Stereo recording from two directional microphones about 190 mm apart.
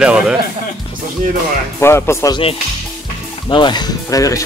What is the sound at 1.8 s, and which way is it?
Speech, 15° left (ahead or behind).